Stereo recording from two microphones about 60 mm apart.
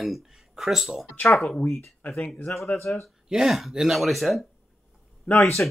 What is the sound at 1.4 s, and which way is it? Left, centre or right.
Speech, left.